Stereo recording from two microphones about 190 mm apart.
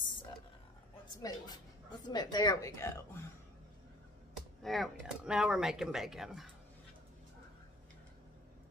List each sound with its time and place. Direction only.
1.2 s speech: 20° left (ahead or behind)
4.3 s speech: centre (ahead or behind)